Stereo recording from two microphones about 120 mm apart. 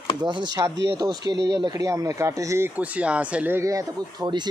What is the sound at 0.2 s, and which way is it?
Speech, 40° right (ahead or behind).